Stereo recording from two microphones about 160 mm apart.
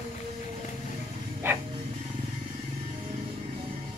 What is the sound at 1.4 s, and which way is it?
Dog, 15° right (ahead or behind).